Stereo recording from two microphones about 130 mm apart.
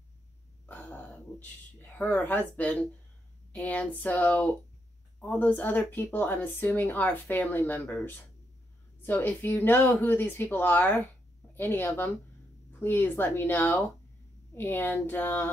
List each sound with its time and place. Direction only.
0.7 s speech: 10° left (ahead or behind)